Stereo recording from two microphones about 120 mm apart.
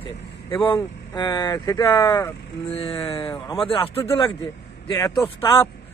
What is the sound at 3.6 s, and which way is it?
Speech, 50° left (ahead or behind).